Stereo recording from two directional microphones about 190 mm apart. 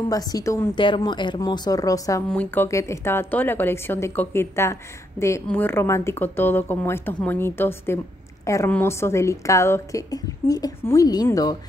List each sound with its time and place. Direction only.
0.1 s a woman's voice: 20° left (ahead or behind)